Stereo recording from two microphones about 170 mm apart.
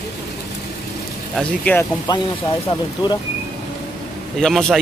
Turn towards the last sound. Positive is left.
turn(degrees=5)  # may be behind; listen again after turning